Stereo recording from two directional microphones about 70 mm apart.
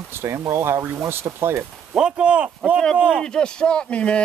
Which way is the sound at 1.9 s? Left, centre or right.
Centre.